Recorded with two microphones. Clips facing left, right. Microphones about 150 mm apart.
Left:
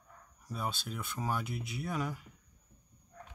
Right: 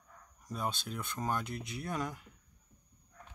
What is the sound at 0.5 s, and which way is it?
Speech, 5° left (ahead or behind).